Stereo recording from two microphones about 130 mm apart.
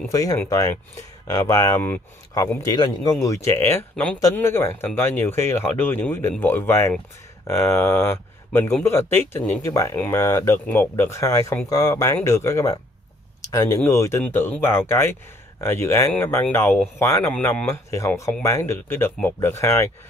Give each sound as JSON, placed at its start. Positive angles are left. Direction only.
{"t": 0.1, "sound": "speech", "side_deg": 25}
{"t": 3.9, "sound": "speech", "side_deg": 5}
{"t": 4.2, "sound": "speech", "side_deg": 20}